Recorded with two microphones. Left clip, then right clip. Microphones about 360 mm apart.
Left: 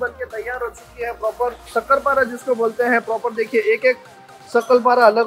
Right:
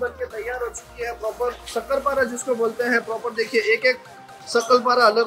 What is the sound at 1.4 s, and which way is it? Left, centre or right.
A man's voice, centre.